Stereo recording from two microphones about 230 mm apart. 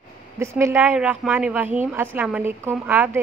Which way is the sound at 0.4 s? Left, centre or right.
Centre.